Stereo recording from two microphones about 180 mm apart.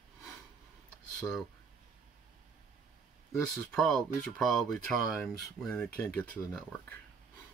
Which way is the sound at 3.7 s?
5° left (ahead or behind).